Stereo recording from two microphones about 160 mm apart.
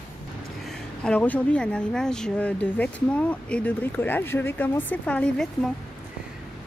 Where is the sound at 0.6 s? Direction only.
5° left (ahead or behind).